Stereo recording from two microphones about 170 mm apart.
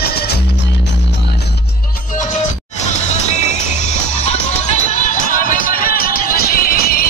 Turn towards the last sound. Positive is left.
turn(degrees=60)  # may be behind; listen again after turning